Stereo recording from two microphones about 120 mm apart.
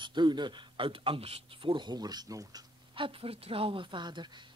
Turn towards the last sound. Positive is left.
turn(degrees=-40)  # may be behind; listen again after turning